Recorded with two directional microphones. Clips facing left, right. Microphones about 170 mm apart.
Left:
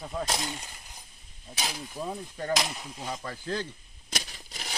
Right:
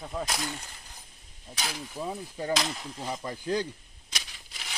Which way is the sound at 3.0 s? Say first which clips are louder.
Right 3 dB; 15° right (ahead or behind).